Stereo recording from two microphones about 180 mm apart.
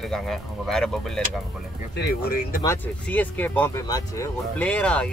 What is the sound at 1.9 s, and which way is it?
Speech, 60° left (ahead or behind).